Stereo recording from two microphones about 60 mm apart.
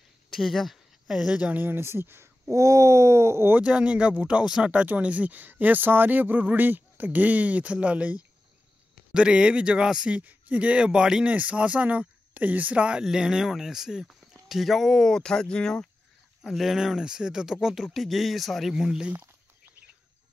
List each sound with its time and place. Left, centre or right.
0.3 s a sound: centre
1.3 s speech: right
1.6 s speech: right
2.5 s speech: right
3.6 s speech: centre
16.4 s speech: centre